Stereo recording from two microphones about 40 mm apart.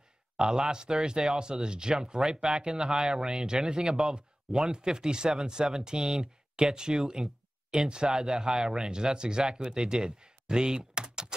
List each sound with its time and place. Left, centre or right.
0.4 s speech: centre